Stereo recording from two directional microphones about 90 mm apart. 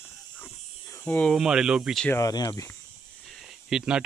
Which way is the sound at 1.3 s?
5° right (ahead or behind).